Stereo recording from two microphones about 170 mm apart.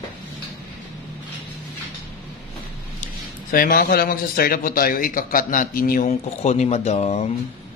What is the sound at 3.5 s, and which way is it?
Speech, 60° left (ahead or behind).